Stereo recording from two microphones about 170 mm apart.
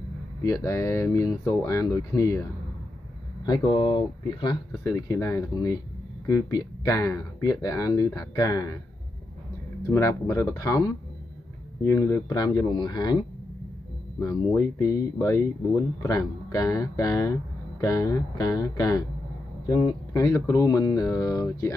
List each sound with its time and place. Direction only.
0.4 s speech: 20° left (ahead or behind)
3.4 s speech: 25° left (ahead or behind)
9.8 s speech: 15° left (ahead or behind)
14.2 s speech: 20° left (ahead or behind)